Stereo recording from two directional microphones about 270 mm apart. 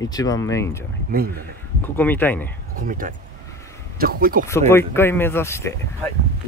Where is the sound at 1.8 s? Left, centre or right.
Centre.